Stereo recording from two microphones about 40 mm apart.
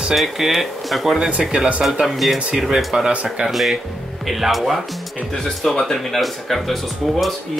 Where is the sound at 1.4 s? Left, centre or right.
Centre.